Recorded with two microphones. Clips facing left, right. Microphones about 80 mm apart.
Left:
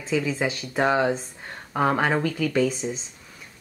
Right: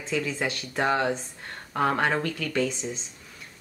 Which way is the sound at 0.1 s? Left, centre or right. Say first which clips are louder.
Left 4 dB; centre.